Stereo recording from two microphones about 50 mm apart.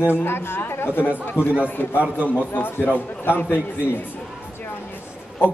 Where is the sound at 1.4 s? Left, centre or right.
Right.